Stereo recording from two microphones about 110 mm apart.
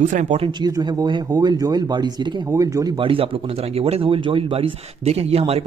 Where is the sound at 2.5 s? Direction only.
30° right (ahead or behind).